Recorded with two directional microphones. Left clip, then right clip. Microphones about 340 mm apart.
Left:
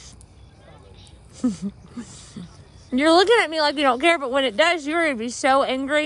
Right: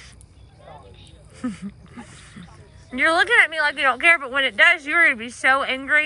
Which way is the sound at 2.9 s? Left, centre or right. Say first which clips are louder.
Even; centre.